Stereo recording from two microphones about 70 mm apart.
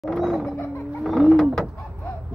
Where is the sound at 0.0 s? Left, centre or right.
Centre.